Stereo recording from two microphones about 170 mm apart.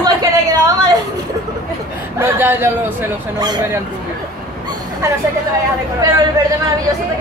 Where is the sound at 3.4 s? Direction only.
25° right (ahead or behind).